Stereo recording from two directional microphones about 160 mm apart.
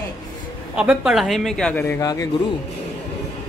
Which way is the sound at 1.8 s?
20° left (ahead or behind).